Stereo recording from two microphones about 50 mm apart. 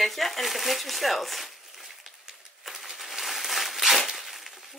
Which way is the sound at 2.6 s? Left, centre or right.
Centre.